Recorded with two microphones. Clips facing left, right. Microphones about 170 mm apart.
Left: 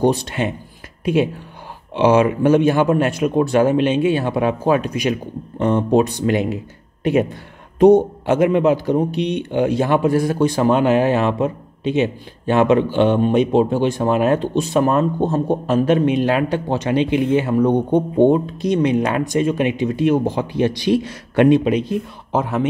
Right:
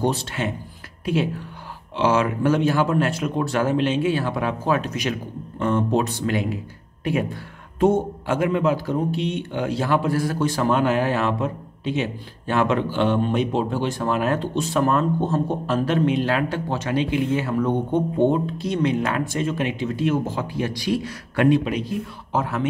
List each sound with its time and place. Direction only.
0.0 s speech: 15° left (ahead or behind)